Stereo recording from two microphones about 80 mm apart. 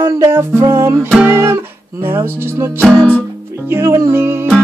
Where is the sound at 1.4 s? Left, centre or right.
Right.